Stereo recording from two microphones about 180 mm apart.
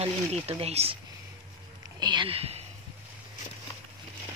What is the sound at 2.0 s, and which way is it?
Speech, 25° right (ahead or behind).